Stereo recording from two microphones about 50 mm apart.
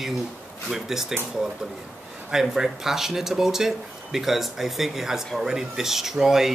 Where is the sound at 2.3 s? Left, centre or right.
Centre.